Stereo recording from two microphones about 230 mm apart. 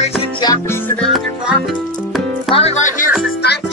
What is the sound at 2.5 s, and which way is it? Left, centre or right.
Music, left.